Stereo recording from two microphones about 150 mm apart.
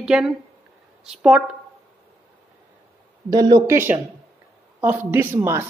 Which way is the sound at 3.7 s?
15° right (ahead or behind).